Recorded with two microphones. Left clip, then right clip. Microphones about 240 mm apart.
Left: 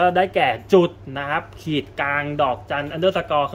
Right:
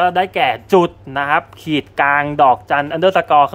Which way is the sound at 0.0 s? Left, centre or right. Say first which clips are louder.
Right 3 dB; centre.